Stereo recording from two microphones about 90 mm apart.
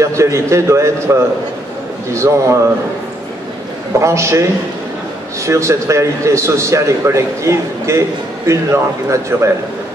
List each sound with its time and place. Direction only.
0.0 s a man's voice: 35° right (ahead or behind)
4.0 s a man's voice: 35° right (ahead or behind)